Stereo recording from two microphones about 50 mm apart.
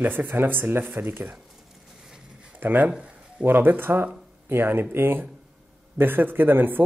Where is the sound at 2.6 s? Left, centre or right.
Right.